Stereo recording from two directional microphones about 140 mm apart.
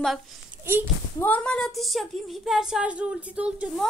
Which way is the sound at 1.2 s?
10° left (ahead or behind).